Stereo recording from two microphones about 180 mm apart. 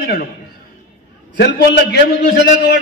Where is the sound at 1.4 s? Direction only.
65° left (ahead or behind).